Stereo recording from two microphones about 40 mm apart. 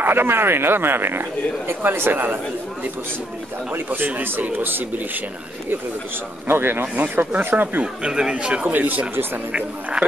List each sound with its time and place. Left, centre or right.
0.0 s speech: right
3.7 s speech: right
6.4 s speech: right
7.8 s speech: right
8.6 s speech: right
9.5 s speech: right